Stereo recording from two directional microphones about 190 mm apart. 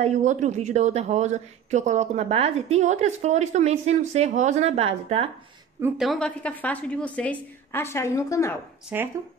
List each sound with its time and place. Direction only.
0.0 s speech: 40° right (ahead or behind)
5.9 s a woman's voice: centre (ahead or behind)
8.9 s speech: 10° right (ahead or behind)